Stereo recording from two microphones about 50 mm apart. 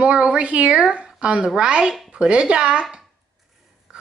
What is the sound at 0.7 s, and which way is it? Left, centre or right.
Speech, centre.